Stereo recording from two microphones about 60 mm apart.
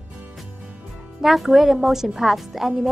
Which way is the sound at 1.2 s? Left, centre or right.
Centre.